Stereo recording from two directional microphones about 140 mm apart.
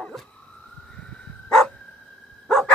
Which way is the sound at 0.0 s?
5° left (ahead or behind).